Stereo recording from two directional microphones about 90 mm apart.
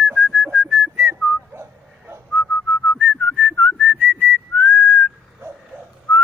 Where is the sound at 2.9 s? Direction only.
15° left (ahead or behind).